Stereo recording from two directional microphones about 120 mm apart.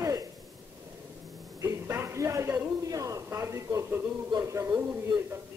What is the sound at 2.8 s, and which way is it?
A man's voice, 30° right (ahead or behind).